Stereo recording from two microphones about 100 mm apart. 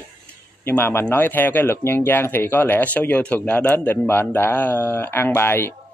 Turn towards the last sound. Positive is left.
turn(degrees=25)  # may be behind; listen again after turning